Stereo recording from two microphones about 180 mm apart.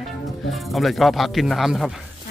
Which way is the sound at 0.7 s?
Centre (ahead or behind).